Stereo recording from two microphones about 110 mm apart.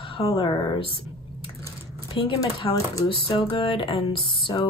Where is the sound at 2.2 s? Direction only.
55° left (ahead or behind).